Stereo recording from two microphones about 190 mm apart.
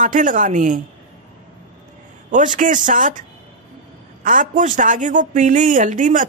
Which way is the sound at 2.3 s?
40° right (ahead or behind).